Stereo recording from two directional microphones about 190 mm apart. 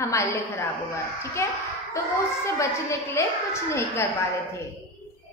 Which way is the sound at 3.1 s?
15° left (ahead or behind).